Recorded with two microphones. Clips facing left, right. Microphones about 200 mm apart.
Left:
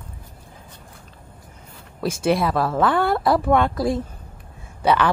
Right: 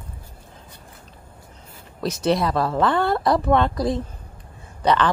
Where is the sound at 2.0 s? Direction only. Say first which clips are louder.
Left 1 dB; 5° left (ahead or behind).